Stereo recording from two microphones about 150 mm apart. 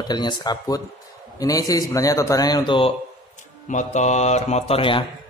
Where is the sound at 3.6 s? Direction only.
55° left (ahead or behind); by 5.0 s 35° left (ahead or behind).